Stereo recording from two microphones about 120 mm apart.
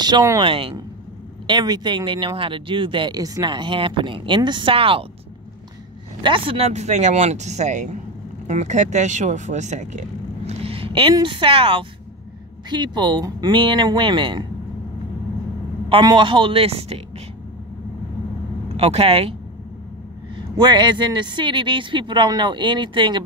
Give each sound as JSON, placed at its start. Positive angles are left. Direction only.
{"t": 0.0, "sound": "speech", "side_deg": -35}
{"t": 0.4, "sound": "speech", "side_deg": -50}
{"t": 1.5, "sound": "speech", "side_deg": -35}
{"t": 6.2, "sound": "speech", "side_deg": -45}
{"t": 6.7, "sound": "speech", "side_deg": -70}
{"t": 10.6, "sound": "vehicle", "side_deg": -50}
{"t": 11.2, "sound": "speech", "side_deg": -45}
{"t": 15.9, "sound": "speech", "side_deg": -40}
{"t": 18.8, "sound": "speech", "side_deg": -55}
{"t": 20.3, "sound": "speech", "side_deg": -40}